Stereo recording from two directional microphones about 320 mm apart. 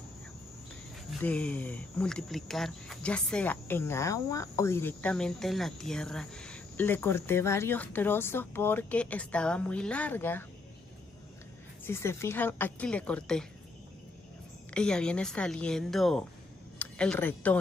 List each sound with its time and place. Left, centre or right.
1.2 s speech: centre
11.8 s speech: centre
14.7 s speech: centre